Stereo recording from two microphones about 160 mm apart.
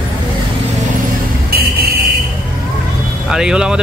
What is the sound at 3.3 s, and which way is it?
Speech, 5° right (ahead or behind).